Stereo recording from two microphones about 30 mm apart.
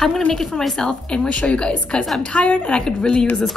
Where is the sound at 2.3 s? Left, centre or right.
Left.